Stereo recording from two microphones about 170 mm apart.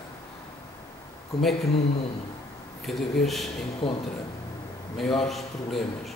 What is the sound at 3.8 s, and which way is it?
Speech, 30° left (ahead or behind).